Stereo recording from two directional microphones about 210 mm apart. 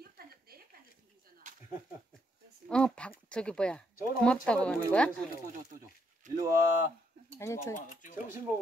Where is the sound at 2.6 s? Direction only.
5° left (ahead or behind).